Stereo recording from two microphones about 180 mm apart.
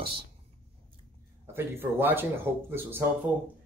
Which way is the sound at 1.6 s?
10° right (ahead or behind).